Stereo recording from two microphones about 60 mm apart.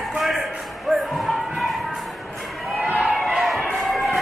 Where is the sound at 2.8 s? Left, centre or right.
Right.